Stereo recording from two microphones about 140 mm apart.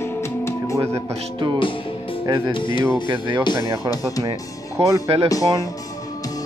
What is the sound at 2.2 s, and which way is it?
Speech, 25° right (ahead or behind).